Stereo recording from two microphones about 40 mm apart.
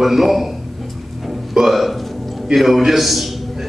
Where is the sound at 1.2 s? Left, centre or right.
Centre.